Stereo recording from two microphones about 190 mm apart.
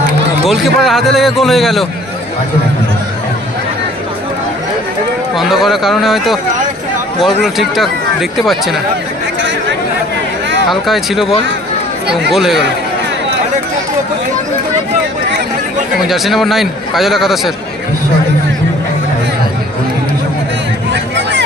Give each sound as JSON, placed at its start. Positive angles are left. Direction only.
{"t": 0.5, "sound": "a man's voice", "side_deg": 0}
{"t": 5.3, "sound": "a man's voice", "side_deg": 0}
{"t": 7.4, "sound": "a man's voice", "side_deg": 0}
{"t": 10.7, "sound": "a man's voice", "side_deg": 0}
{"t": 16.1, "sound": "a man's voice", "side_deg": 0}